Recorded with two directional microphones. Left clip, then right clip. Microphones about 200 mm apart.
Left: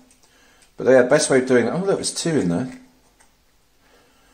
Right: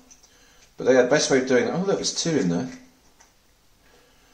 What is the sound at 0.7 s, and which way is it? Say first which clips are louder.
Speech: left 4 dB; 55° left (ahead or behind).